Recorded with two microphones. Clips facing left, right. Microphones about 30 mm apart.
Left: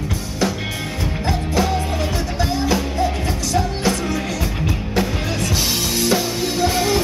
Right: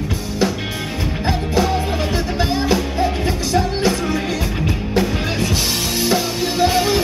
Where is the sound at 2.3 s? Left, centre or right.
Right.